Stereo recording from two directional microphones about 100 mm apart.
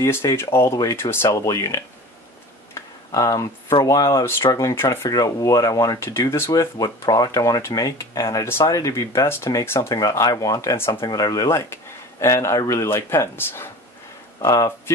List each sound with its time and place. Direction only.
0.0 s speech: 30° left (ahead or behind)
2.7 s tick: 30° left (ahead or behind)
3.8 s speech: 35° left (ahead or behind)
14.4 s speech: 35° left (ahead or behind)